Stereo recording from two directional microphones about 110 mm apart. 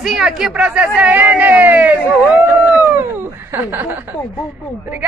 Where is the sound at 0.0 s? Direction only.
5° right (ahead or behind).